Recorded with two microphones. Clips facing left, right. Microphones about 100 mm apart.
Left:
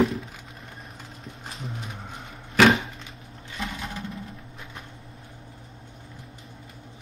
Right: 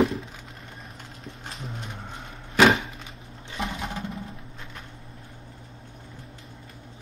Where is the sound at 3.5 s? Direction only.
30° right (ahead or behind).